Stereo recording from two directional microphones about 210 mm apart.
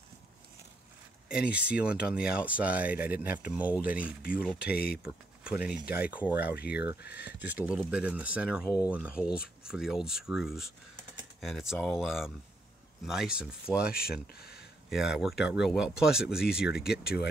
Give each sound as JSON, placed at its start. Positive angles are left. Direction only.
{"t": 1.3, "sound": "speech", "side_deg": -5}
{"t": 4.2, "sound": "speech", "side_deg": 45}
{"t": 5.0, "sound": "speech", "side_deg": -5}
{"t": 7.0, "sound": "speech", "side_deg": 50}
{"t": 7.2, "sound": "speech", "side_deg": -10}
{"t": 8.6, "sound": "speech", "side_deg": 15}
{"t": 8.9, "sound": "speech", "side_deg": -5}
{"t": 14.2, "sound": "speech", "side_deg": 50}
{"t": 14.9, "sound": "speech", "side_deg": 0}
{"t": 16.7, "sound": "speech", "side_deg": 50}